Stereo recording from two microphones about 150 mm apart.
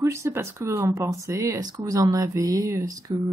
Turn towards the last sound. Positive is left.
turn(degrees=-25)  # may be behind; listen again after turning